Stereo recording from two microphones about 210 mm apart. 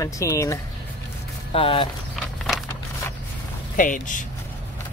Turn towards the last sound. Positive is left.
turn(degrees=40)  # may be behind; listen again after turning